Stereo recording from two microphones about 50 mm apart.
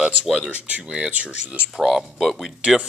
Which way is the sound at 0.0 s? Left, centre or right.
Right.